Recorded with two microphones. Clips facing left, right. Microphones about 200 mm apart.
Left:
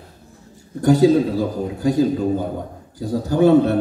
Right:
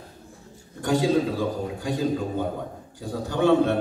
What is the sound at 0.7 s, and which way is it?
A man's voice, 40° left (ahead or behind).